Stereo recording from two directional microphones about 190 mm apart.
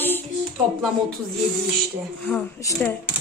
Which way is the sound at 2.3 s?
15° left (ahead or behind).